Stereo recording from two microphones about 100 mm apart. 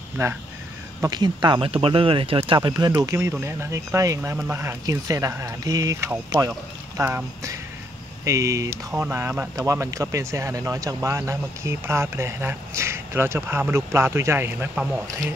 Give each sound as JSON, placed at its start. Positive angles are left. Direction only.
{"t": 0.2, "sound": "speech", "side_deg": -30}
{"t": 1.1, "sound": "speech", "side_deg": -45}
{"t": 1.7, "sound": "speech", "side_deg": -70}
{"t": 3.2, "sound": "speech", "side_deg": -25}
{"t": 4.8, "sound": "speech", "side_deg": -35}
{"t": 8.3, "sound": "speech", "side_deg": -30}
{"t": 9.7, "sound": "speech", "side_deg": -30}